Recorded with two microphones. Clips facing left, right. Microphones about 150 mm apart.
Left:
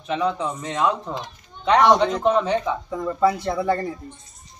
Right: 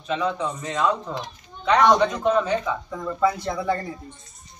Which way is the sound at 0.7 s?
25° left (ahead or behind).